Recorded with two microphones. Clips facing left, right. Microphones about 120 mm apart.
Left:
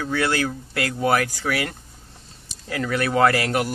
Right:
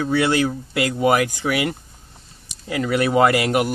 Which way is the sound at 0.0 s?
15° right (ahead or behind).